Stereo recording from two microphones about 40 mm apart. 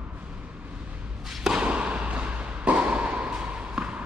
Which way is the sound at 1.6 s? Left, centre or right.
Right.